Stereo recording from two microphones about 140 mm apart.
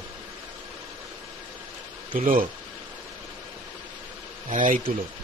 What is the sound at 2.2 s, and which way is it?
Speech, 75° right (ahead or behind).